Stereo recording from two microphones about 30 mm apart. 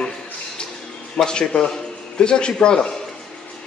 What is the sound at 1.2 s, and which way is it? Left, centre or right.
Speech, left.